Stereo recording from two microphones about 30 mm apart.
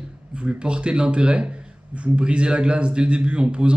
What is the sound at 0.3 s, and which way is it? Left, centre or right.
A man's voice, right.